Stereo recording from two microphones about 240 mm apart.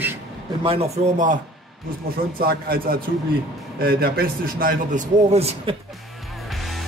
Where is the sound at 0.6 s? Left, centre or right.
Right.